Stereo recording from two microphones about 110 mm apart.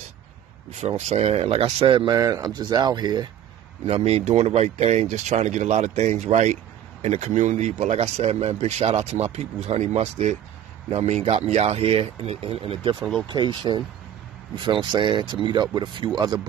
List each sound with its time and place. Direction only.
0.7 s speech: 85° right; by 2.0 s 55° right (ahead or behind)
2.0 s speech: 35° right (ahead or behind)
3.8 s speech: 65° right (ahead or behind)
13.3 s speech: 45° right (ahead or behind)